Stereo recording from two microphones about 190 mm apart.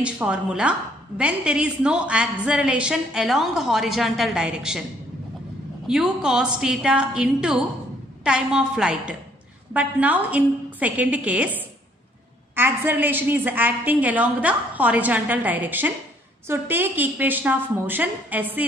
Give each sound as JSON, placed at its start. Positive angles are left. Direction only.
{"t": 0.0, "sound": "a woman's voice", "side_deg": -5}
{"t": 5.9, "sound": "a woman's voice", "side_deg": -5}
{"t": 12.5, "sound": "a woman's voice", "side_deg": -10}